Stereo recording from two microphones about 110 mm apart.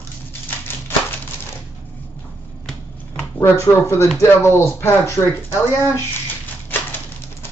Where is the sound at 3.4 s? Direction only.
25° left (ahead or behind).